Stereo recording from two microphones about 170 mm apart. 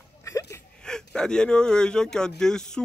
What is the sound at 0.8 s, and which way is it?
Speech, 5° left (ahead or behind).